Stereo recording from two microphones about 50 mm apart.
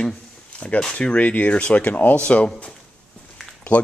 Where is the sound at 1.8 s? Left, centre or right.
Left.